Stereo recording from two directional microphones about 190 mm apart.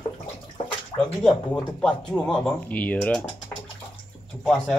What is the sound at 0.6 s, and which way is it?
Bathtub, 40° left (ahead or behind).